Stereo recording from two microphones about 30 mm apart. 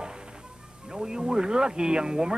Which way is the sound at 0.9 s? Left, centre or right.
Right.